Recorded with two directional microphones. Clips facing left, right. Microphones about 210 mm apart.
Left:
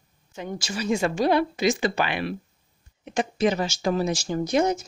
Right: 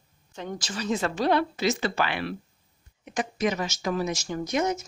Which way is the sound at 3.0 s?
30° left (ahead or behind).